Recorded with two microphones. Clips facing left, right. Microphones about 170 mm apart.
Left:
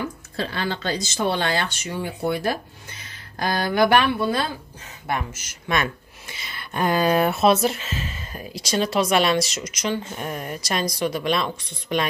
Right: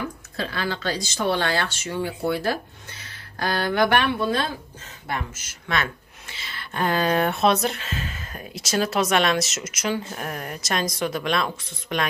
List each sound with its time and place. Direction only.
0.4 s speech: 25° left (ahead or behind); by 12.1 s centre (ahead or behind)